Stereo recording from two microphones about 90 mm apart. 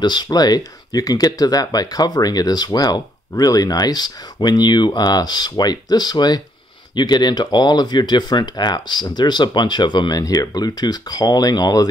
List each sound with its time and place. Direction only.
0.0 s speech: 55° left (ahead or behind)